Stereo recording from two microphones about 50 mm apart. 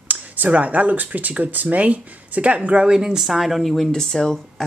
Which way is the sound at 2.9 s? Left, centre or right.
Centre.